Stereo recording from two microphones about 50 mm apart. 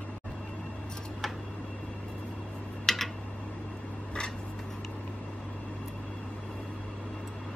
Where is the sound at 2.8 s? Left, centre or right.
Centre.